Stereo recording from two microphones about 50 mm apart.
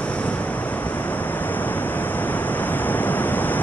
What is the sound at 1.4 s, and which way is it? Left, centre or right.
Waves, left.